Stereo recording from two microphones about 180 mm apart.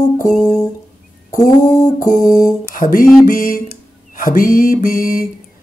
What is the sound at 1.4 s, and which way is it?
Mantra, 55° left (ahead or behind).